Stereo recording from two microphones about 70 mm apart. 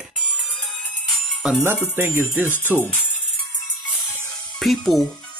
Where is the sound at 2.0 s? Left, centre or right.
Right.